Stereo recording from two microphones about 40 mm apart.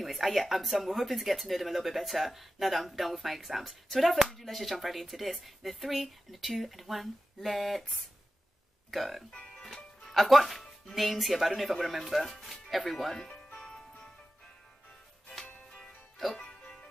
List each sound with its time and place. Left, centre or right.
0.0 s speech: centre
16.3 s music: left